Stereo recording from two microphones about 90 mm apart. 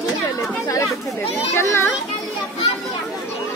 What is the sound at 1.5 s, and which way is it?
Children playing, 30° left (ahead or behind).